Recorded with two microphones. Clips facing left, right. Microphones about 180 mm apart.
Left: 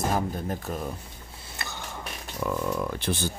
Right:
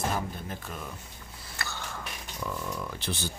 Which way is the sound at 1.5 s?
20° left (ahead or behind).